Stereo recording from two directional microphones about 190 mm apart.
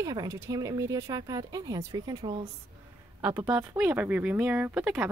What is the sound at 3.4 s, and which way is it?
Speech, 5° right (ahead or behind).